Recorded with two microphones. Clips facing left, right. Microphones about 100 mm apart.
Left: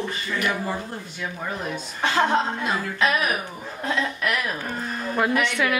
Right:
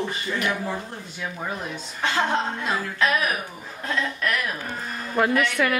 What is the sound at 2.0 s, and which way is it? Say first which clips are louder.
A woman's voice: left 2 dB; 5° left (ahead or behind).